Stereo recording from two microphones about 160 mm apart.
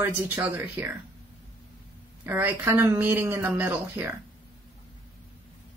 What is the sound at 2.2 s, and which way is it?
A woman's voice, 15° right (ahead or behind).